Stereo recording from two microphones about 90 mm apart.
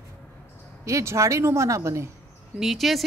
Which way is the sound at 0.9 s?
35° right (ahead or behind).